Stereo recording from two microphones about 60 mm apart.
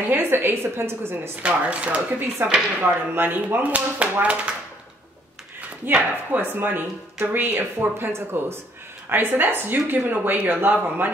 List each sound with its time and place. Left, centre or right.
0.1 s speech: right
1.4 s speech: right
2.4 s speech: right
5.9 s speech: right